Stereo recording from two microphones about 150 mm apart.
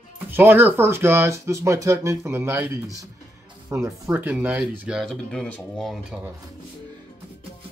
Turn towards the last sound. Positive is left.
turn(degrees=0)  # may be behind; listen again after turning